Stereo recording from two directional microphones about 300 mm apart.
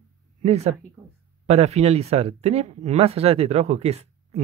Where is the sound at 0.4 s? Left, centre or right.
Right.